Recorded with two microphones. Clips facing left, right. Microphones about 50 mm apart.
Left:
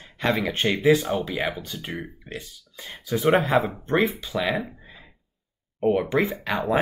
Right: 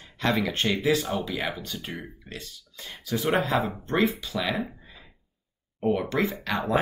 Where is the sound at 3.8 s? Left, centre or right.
Left.